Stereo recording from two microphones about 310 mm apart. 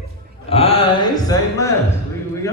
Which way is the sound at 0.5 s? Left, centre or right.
Centre.